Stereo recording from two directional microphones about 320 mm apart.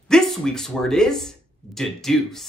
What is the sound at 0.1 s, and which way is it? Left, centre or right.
A woman's voice, centre.